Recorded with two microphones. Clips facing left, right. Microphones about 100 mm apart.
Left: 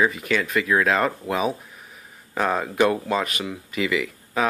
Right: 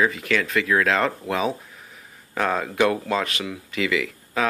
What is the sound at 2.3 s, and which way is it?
Speech, 15° left (ahead or behind).